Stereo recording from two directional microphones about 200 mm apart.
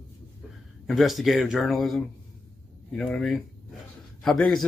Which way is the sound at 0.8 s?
Centre (ahead or behind).